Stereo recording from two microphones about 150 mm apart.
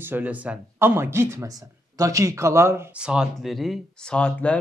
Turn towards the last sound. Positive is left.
turn(degrees=5)  # may be behind; listen again after turning